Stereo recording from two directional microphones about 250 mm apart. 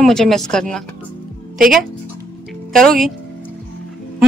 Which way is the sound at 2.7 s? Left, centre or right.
Centre.